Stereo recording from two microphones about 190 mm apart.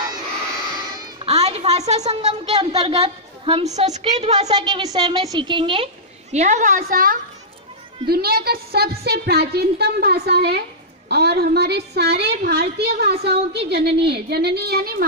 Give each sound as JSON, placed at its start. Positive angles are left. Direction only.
{"t": 1.2, "sound": "a woman's voice", "side_deg": -35}
{"t": 6.3, "sound": "a woman's voice", "side_deg": -40}